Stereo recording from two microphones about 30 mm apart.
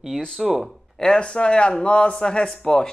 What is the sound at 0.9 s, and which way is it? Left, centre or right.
Speech, left.